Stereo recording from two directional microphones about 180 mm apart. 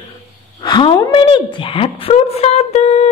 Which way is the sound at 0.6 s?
25° left (ahead or behind).